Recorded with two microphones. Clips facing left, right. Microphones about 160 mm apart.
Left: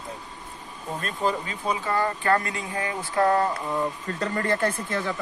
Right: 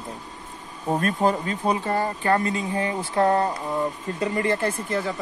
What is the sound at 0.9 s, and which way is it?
Speech, 50° right (ahead or behind).